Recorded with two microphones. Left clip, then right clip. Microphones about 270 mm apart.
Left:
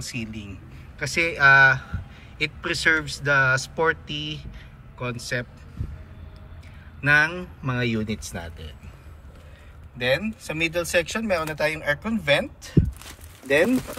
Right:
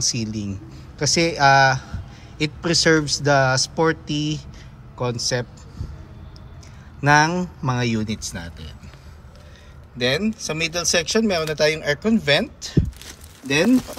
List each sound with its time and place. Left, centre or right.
0.0 s speech: centre
7.0 s speech: centre
9.9 s speech: centre